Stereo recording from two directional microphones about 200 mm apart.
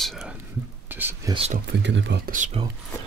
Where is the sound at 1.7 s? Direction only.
60° right (ahead or behind).